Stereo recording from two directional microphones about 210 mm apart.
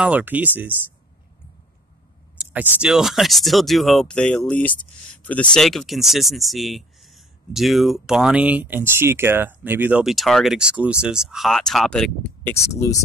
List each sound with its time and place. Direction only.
0.0 s speech: 5° right (ahead or behind)
2.3 s speech: 5° right (ahead or behind)
12.7 s speech: 15° left (ahead or behind)